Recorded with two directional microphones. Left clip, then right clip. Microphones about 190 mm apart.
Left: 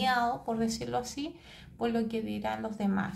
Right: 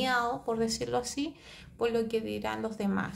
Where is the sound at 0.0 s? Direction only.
10° right (ahead or behind).